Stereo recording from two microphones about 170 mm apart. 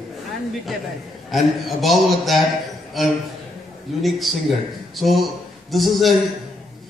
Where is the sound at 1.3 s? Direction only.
Centre (ahead or behind).